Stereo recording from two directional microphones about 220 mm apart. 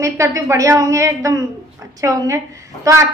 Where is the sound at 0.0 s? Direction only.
15° right (ahead or behind).